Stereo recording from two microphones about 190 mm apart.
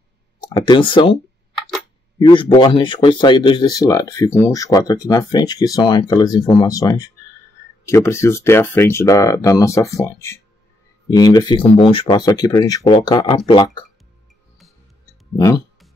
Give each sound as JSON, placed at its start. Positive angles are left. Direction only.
{"t": 0.6, "sound": "speech", "side_deg": 25}
{"t": 2.1, "sound": "speech", "side_deg": 25}
{"t": 15.3, "sound": "speech", "side_deg": 15}